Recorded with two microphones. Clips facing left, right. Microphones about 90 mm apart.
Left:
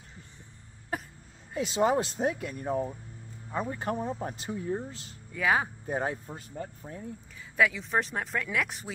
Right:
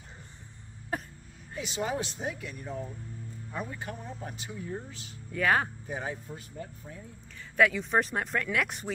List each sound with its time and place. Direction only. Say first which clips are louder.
0.9 s speech: even; 5° left (ahead or behind)
1.7 s speech: left 7 dB; 40° left (ahead or behind)
3.5 s speech: left 7 dB; 35° left (ahead or behind)
5.3 s speech: even; 5° left (ahead or behind)
5.9 s speech: left 5 dB; 45° left (ahead or behind)
7.5 s speech: right 2 dB; centre (ahead or behind)